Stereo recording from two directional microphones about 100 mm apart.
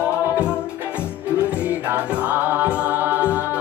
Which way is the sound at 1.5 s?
15° right (ahead or behind).